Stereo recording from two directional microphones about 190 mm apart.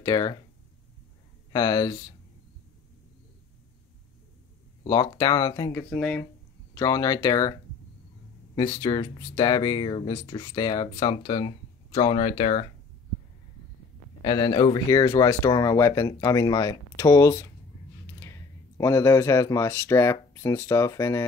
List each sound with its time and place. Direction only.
0.0 s speech: 20° left (ahead or behind)
1.5 s speech: 20° left (ahead or behind)
4.8 s speech: 20° left (ahead or behind)
6.7 s speech: 20° left (ahead or behind)
8.5 s speech: 20° left (ahead or behind)
14.2 s speech: 20° left (ahead or behind)
18.8 s speech: 15° left (ahead or behind)